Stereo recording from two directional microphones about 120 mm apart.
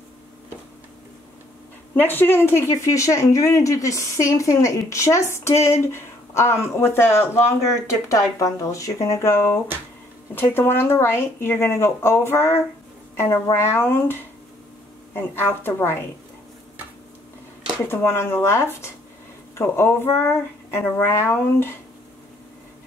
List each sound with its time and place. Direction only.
2.0 s speech: 15° left (ahead or behind)
17.8 s speech: 20° left (ahead or behind)